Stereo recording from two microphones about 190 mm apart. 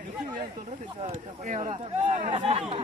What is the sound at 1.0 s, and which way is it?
Speech, 35° right (ahead or behind).